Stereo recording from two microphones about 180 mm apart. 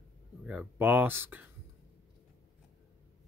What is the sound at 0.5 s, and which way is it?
Speech, 10° right (ahead or behind).